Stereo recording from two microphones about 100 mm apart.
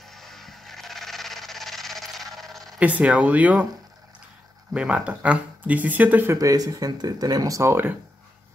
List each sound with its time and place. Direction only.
0.1 s a sound: 5° left (ahead or behind)
2.8 s speech: 15° right (ahead or behind)
4.7 s speech: 10° right (ahead or behind)
6.3 s speech: 40° right (ahead or behind); by 8.0 s 20° right (ahead or behind)